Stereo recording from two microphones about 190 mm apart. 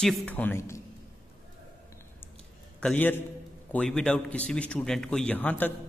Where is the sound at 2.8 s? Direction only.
10° left (ahead or behind).